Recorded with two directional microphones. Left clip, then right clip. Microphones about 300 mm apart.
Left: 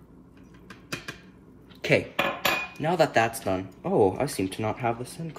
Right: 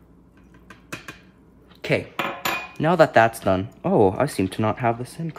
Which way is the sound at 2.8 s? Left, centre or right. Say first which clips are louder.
Right 8 dB; centre.